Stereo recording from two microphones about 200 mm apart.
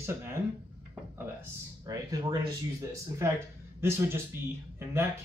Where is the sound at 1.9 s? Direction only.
20° right (ahead or behind).